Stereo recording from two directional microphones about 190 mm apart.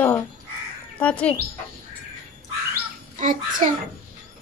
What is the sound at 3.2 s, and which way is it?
Child singing, 45° right (ahead or behind).